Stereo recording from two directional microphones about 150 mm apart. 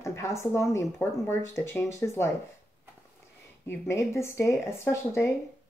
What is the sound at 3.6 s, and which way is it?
Speech, 20° left (ahead or behind).